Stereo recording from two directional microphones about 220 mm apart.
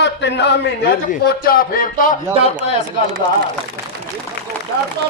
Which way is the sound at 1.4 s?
40° left (ahead or behind).